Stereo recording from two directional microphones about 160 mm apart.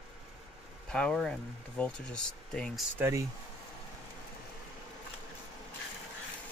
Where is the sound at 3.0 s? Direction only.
20° right (ahead or behind).